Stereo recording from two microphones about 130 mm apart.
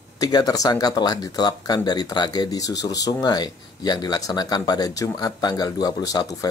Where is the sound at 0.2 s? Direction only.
30° left (ahead or behind).